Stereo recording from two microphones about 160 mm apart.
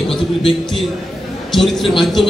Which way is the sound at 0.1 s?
Centre (ahead or behind).